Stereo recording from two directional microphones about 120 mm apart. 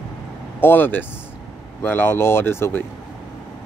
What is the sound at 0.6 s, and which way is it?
Speech, 15° left (ahead or behind).